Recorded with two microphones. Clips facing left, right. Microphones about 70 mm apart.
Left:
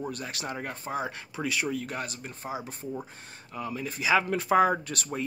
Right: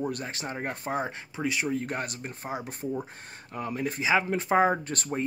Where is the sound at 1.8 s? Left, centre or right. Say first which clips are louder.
Right 2 dB; right.